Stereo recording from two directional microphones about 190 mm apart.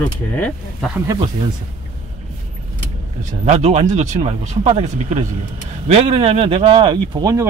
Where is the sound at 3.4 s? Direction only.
35° right (ahead or behind).